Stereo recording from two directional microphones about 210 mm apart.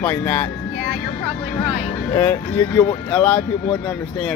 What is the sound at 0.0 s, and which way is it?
Speech, 10° left (ahead or behind).